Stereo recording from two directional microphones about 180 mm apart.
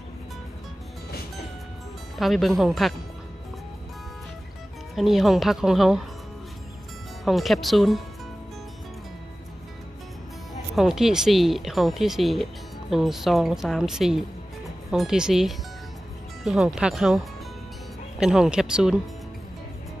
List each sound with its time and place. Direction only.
2.1 s speech: centre (ahead or behind)
4.9 s speech: centre (ahead or behind)
7.2 s speech: centre (ahead or behind)
10.8 s speech: centre (ahead or behind)